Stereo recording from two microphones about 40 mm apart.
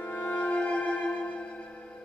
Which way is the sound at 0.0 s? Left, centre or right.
Left.